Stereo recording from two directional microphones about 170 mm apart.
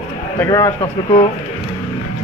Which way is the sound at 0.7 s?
35° left (ahead or behind).